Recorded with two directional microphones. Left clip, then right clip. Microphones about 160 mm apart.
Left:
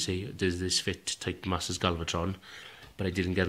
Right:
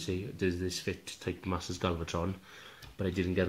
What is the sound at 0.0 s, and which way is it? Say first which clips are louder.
Speech: left 3 dB; 15° left (ahead or behind).